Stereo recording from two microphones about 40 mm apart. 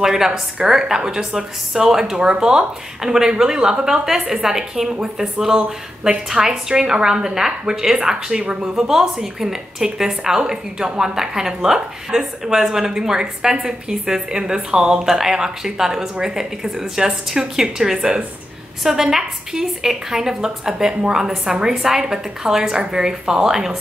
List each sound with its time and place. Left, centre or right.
0.0 s a woman's voice: centre
8.4 s a woman's voice: right